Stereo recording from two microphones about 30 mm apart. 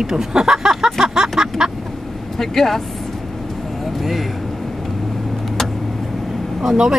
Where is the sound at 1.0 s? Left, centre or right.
Centre.